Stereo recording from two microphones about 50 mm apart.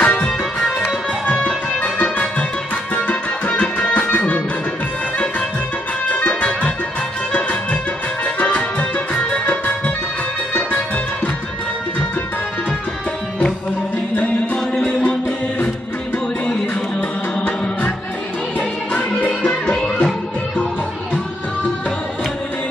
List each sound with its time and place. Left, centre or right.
0.0 s music: left
1.4 s music: left
6.0 s music: left
8.4 s music: left
18.6 s music: left